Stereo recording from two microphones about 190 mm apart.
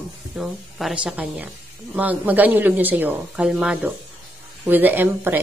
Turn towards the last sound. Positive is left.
turn(degrees=-10)  # may be behind; listen again after turning